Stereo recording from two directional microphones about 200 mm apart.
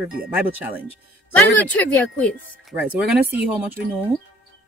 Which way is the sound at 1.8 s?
10° left (ahead or behind).